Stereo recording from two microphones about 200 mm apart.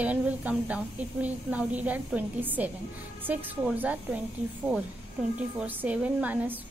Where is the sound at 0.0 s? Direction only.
10° right (ahead or behind).